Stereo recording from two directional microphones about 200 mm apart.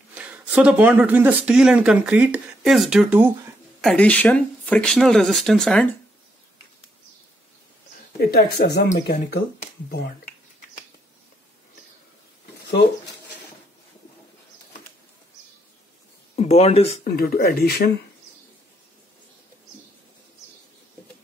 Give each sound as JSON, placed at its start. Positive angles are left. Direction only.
{"t": 0.1, "sound": "speech", "side_deg": -5}
{"t": 3.8, "sound": "speech", "side_deg": 5}
{"t": 8.2, "sound": "speech", "side_deg": 50}
{"t": 12.6, "sound": "speech", "side_deg": 55}
{"t": 16.3, "sound": "speech", "side_deg": 30}
{"t": 17.0, "sound": "speech", "side_deg": 50}